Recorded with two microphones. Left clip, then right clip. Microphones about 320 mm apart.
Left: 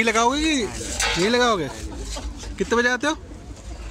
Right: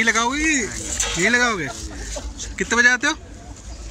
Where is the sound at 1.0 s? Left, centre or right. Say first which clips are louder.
Left 1 dB; left.